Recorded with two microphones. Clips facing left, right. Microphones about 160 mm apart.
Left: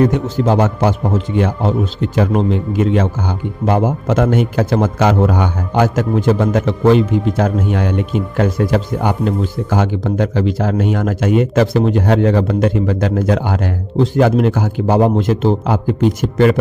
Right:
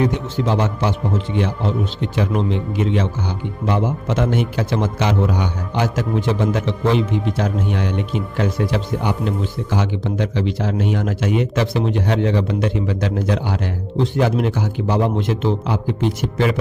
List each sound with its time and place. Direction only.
0.0 s speech: 45° left (ahead or behind)